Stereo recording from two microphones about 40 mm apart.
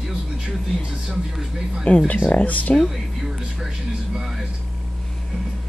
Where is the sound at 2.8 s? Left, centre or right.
Centre.